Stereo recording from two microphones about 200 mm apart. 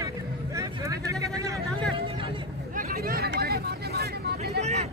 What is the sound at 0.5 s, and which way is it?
Vehicle, 15° right (ahead or behind).